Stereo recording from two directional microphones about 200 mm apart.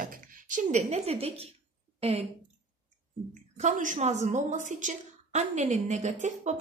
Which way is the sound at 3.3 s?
40° right (ahead or behind).